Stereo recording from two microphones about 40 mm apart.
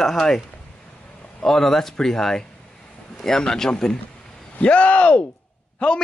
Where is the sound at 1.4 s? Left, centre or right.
Centre.